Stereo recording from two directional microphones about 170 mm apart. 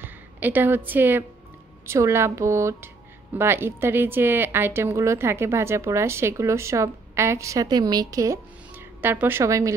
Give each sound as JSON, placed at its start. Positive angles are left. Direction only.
{"t": 0.0, "sound": "a woman's voice", "side_deg": -10}